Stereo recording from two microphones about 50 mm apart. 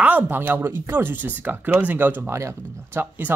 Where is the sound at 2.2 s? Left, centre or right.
Right.